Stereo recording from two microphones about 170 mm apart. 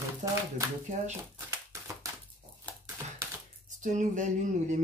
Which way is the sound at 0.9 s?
45° right (ahead or behind).